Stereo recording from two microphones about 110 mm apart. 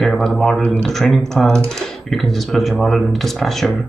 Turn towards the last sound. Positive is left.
turn(degrees=0)  # may be behind; listen again after turning